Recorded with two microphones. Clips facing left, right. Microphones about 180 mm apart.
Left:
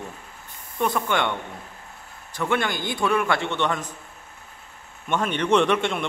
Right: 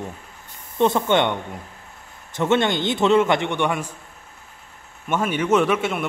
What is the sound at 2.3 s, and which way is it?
A man's voice, 25° right (ahead or behind).